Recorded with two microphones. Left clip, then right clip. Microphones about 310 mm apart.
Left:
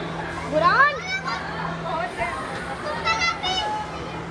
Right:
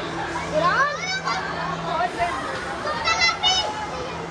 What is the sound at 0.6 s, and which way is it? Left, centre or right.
Children playing, left.